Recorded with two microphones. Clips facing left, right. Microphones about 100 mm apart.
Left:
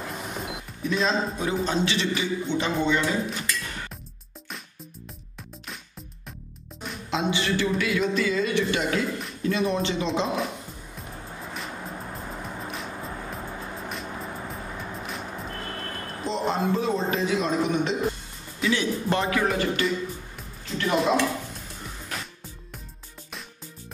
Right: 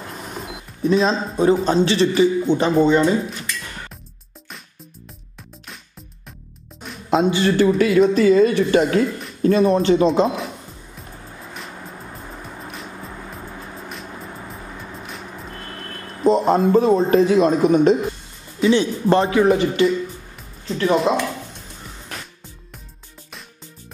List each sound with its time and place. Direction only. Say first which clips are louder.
0.8 s a man's voice: right 7 dB; 35° right (ahead or behind)
3.3 s speech: even; centre (ahead or behind)
7.1 s speech: right 9 dB; 45° right (ahead or behind)
12.6 s music: even; centre (ahead or behind)
14.5 s music: even; centre (ahead or behind)
16.3 s speech: right 10 dB; 45° right (ahead or behind)
18.6 s speech: right 8 dB; 30° right (ahead or behind)
20.9 s speech: right 3 dB; centre (ahead or behind)